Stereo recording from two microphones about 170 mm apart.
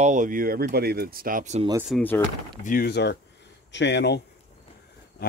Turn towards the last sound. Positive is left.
turn(degrees=70)  # may be behind; listen again after turning